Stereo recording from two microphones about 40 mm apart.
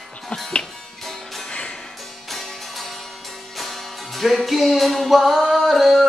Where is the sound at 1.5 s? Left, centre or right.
Left.